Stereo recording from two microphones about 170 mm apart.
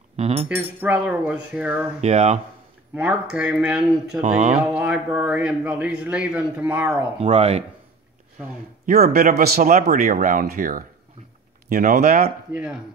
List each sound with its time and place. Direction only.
0.1 s speech: 40° right (ahead or behind)
0.5 s a man's voice: 10° right (ahead or behind)
2.0 s speech: 40° right (ahead or behind)
3.0 s speech: 5° right (ahead or behind)
4.2 s speech: 45° right (ahead or behind)
4.6 s a man's voice: 5° right (ahead or behind)
7.2 s speech: 35° right (ahead or behind)
8.8 s speech: 60° right (ahead or behind); by 12.3 s 45° right (ahead or behind)